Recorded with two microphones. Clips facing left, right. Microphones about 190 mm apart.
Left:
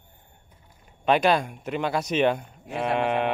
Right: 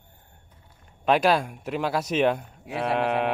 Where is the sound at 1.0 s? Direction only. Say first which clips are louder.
Even; centre (ahead or behind).